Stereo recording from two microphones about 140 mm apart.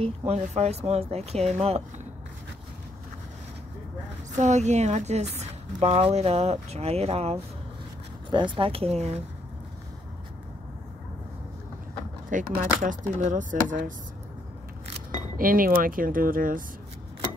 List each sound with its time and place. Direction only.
0.3 s a woman's voice: 50° right (ahead or behind)
4.4 s a woman's voice: 55° right (ahead or behind)
8.3 s speech: 35° right (ahead or behind); by 9.2 s 50° right (ahead or behind)
12.3 s speech: 70° right (ahead or behind)
15.3 s speech: 90° right